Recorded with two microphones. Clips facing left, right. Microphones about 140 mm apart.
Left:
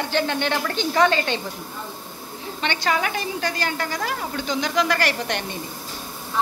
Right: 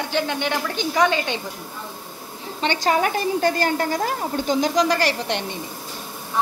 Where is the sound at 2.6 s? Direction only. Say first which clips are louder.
Right 4 dB; 35° right (ahead or behind).